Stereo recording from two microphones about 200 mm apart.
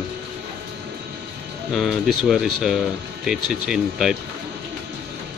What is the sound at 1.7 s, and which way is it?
Speech, centre (ahead or behind).